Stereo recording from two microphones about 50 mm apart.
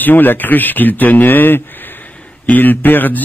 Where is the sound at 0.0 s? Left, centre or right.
Left.